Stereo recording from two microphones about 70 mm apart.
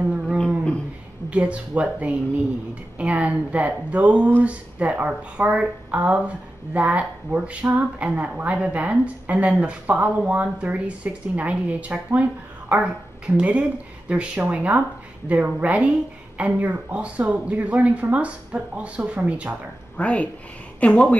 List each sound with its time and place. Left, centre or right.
0.0 s a sound: centre
1.3 s speech: centre
20.0 s speech: centre